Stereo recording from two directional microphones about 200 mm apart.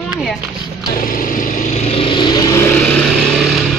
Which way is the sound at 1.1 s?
45° left (ahead or behind).